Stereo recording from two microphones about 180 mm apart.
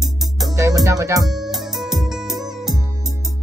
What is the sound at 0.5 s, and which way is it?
Music, 20° right (ahead or behind).